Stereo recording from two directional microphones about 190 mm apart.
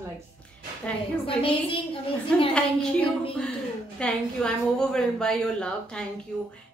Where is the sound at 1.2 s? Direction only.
30° left (ahead or behind).